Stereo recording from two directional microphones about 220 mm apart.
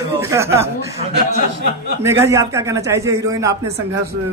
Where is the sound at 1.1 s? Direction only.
50° right (ahead or behind).